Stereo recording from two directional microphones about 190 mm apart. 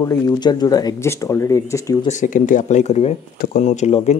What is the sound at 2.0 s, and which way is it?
Speech, 40° left (ahead or behind).